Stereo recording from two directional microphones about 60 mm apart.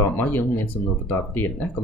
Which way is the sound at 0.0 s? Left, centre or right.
Left.